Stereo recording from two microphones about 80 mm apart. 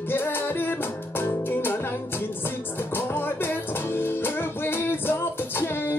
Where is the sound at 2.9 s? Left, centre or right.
Left.